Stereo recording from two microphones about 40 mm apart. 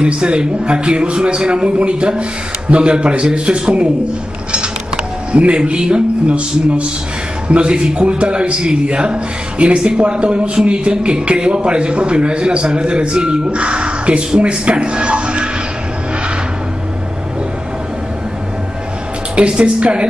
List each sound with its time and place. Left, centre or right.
0.0 s a man's voice: right
19.3 s a man's voice: right